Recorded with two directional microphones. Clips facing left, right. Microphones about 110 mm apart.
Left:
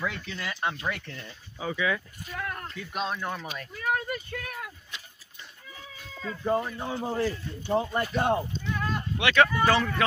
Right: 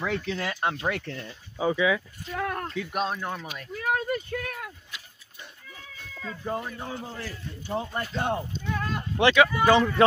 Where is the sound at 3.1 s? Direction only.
20° right (ahead or behind).